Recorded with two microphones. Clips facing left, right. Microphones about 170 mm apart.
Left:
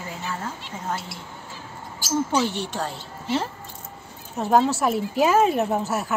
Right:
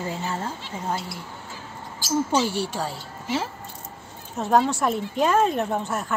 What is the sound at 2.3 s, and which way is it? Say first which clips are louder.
A woman's voice: right 1 dB; 10° right (ahead or behind).